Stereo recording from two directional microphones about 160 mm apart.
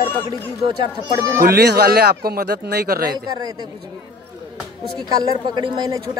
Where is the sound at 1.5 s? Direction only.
90° right; by 3.2 s 70° right (ahead or behind).